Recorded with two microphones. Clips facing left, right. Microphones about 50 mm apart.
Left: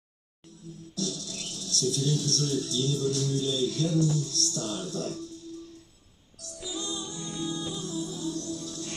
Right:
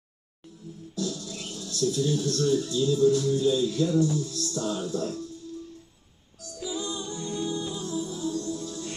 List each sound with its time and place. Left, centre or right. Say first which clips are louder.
0.9 s speech: right 2 dB; centre
6.6 s music: right 3 dB; centre